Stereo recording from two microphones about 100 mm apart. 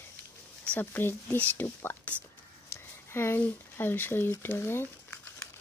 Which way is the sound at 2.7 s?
25° left (ahead or behind).